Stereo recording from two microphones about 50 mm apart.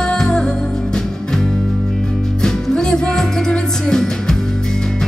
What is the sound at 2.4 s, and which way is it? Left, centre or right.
Music, centre.